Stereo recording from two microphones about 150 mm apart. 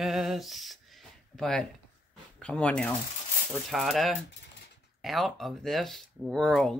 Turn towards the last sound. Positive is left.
turn(degrees=5)  # may be behind; listen again after turning